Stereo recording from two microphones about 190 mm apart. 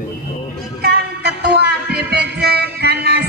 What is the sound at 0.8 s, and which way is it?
Music, 60° right (ahead or behind).